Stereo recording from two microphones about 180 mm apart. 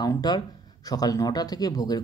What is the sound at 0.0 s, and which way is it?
Speech, 20° left (ahead or behind).